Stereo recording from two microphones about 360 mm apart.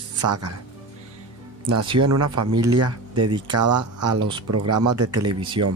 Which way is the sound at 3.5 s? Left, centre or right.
Right.